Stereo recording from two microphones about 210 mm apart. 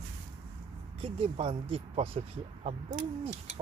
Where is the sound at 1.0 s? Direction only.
25° right (ahead or behind).